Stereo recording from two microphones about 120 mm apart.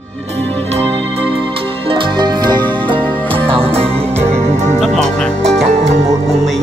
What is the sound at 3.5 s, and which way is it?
Music, 55° right (ahead or behind).